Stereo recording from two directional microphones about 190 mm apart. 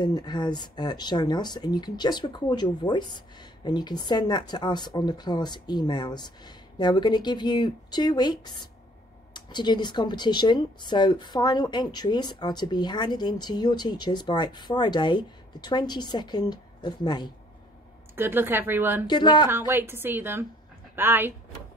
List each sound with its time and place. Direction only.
0.0 s speech: 25° left (ahead or behind)
18.1 s speech: 10° right (ahead or behind)
19.0 s speech: 25° left (ahead or behind)
19.7 s speech: 10° right (ahead or behind)